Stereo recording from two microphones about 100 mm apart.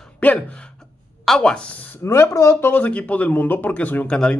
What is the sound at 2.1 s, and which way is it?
Speech, 30° left (ahead or behind).